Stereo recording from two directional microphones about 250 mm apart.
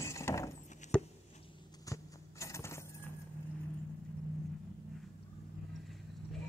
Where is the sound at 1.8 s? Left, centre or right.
Centre.